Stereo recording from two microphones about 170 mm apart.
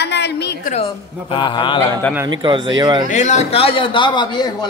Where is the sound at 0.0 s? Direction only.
80° left.